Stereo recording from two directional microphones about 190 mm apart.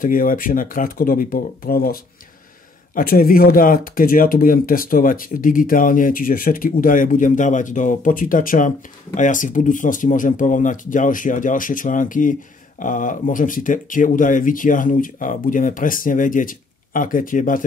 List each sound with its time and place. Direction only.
0.0 s speech: 45° left (ahead or behind)